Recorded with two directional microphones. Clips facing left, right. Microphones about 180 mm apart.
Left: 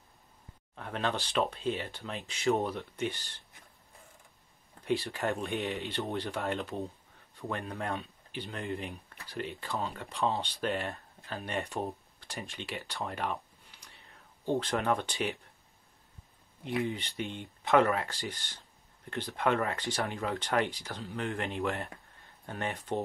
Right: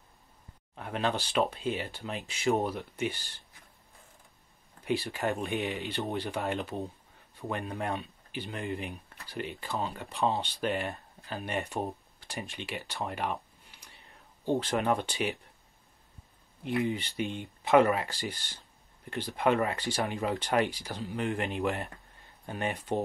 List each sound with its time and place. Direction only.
0.7 s speech: 5° right (ahead or behind)
4.8 s speech: 5° right (ahead or behind)
16.8 s speech: 5° right (ahead or behind)